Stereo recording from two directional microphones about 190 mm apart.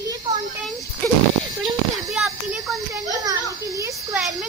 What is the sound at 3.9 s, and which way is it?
Speech, centre (ahead or behind).